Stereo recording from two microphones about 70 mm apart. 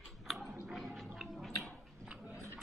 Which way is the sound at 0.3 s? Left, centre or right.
Centre.